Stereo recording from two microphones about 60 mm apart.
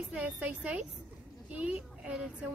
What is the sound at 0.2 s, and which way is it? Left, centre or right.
A woman's voice, right.